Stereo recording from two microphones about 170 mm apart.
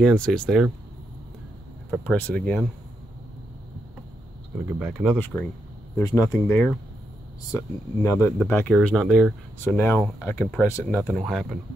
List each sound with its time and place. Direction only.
0.0 s speech: 5° left (ahead or behind)
1.9 s speech: 10° left (ahead or behind)
4.7 s speech: 10° right (ahead or behind)
6.0 s speech: 20° left (ahead or behind)
6.3 s speech: 5° left (ahead or behind)
9.6 s speech: 10° left (ahead or behind)